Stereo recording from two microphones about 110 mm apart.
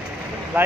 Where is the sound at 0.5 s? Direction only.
20° right (ahead or behind).